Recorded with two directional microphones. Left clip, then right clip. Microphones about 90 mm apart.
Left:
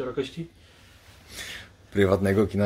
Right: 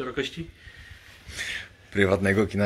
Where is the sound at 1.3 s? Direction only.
15° left (ahead or behind).